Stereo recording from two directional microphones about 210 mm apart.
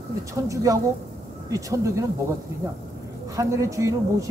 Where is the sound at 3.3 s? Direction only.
15° right (ahead or behind).